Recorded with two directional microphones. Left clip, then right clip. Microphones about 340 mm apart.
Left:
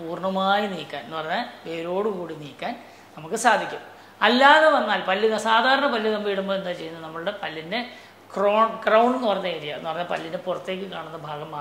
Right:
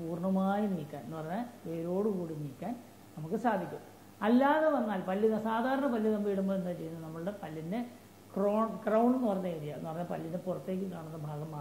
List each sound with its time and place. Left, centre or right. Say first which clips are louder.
0.1 s a woman's voice: left 12 dB; centre
3.3 s a woman's voice: left 12 dB; centre